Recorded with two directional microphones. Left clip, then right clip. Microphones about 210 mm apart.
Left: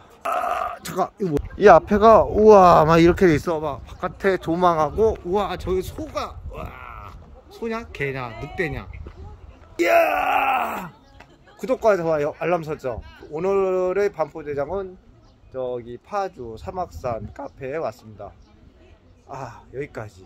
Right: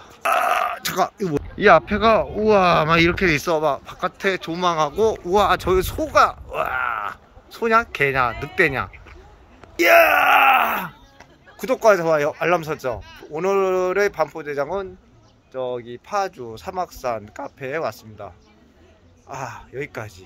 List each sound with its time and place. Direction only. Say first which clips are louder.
0.2 s a sound: right 5 dB; 10° left (ahead or behind)
1.6 s speech: left 2 dB; 40° left (ahead or behind)
3.4 s speech: right 5 dB; 10° left (ahead or behind)
4.2 s speech: left 4 dB; 30° left (ahead or behind); by 18.3 s 5° right (ahead or behind)
19.3 s speech: right 2 dB; centre (ahead or behind)